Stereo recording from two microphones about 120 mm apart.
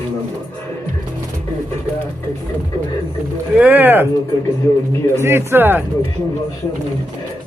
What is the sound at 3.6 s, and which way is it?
Speech, 15° right (ahead or behind).